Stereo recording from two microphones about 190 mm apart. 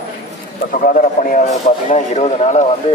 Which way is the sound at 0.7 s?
45° left (ahead or behind).